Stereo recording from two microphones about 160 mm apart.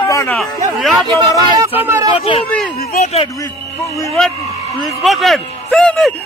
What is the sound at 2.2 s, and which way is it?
Speech, 40° left (ahead or behind).